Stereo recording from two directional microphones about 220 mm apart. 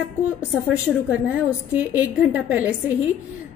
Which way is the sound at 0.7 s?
5° right (ahead or behind).